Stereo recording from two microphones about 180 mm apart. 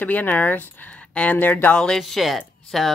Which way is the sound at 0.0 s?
10° left (ahead or behind).